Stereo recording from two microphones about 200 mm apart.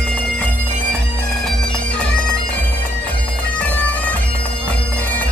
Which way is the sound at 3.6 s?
5° left (ahead or behind).